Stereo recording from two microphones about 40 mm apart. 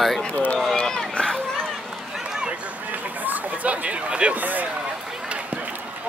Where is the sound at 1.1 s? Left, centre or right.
Centre.